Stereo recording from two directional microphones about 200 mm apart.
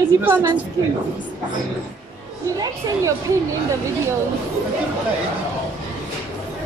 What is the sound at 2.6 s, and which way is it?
Speech, 15° right (ahead or behind).